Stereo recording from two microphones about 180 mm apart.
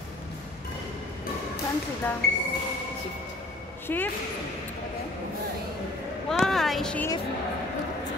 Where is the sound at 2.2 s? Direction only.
65° left (ahead or behind).